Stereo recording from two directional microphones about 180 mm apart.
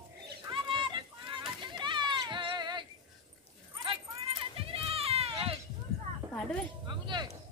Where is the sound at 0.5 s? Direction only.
30° right (ahead or behind).